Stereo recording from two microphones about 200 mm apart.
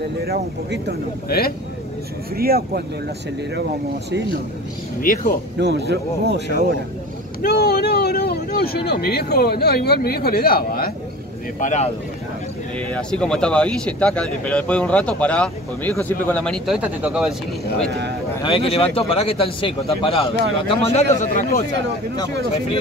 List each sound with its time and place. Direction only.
0.2 s speech: 55° right (ahead or behind)
2.3 s speech: 50° right (ahead or behind)
5.0 s speech: 45° left (ahead or behind)
5.6 s speech: 55° right (ahead or behind)
7.4 s speech: 55° left (ahead or behind)
11.6 s a man's voice: 35° left (ahead or behind)
12.9 s speech: 5° left (ahead or behind)
17.8 s speech: 55° right (ahead or behind)
18.4 s a man's voice: 25° left (ahead or behind)